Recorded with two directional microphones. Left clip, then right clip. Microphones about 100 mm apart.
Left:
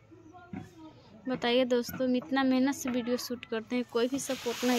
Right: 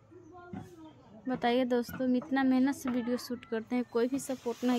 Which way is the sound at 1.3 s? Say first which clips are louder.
Left 2 dB; 25° right (ahead or behind).